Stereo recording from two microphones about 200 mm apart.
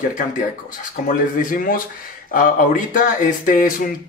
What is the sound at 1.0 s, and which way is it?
Speech, 45° left (ahead or behind).